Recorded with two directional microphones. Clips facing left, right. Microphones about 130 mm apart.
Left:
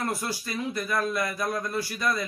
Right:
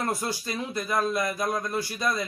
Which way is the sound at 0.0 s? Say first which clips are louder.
Right 1 dB; 25° right (ahead or behind).